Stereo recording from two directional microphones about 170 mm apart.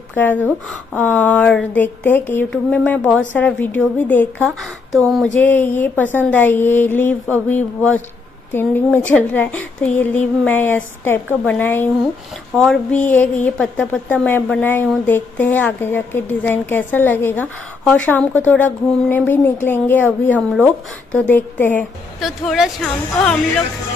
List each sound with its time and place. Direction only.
0.1 s speech: 10° left (ahead or behind)
12.5 s a woman's voice: centre (ahead or behind)
22.2 s a woman's voice: centre (ahead or behind)